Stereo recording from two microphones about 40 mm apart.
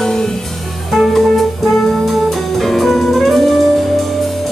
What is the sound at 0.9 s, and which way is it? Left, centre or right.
Music, centre.